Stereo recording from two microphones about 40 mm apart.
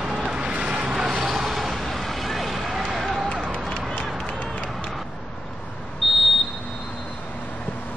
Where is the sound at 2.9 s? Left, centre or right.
Centre.